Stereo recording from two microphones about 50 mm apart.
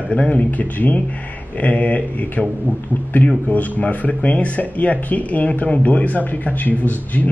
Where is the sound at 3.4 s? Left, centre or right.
Left.